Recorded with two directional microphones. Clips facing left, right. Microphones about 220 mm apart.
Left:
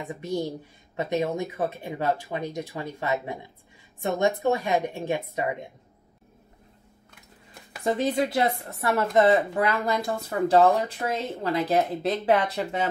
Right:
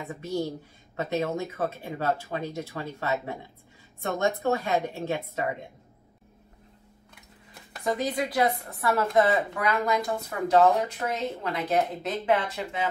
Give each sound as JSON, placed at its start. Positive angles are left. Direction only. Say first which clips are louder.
{"t": 0.1, "sound": "speech", "louder": "left 1 dB", "side_deg": 15}
{"t": 7.8, "sound": "speech", "louder": "left 4 dB", "side_deg": 25}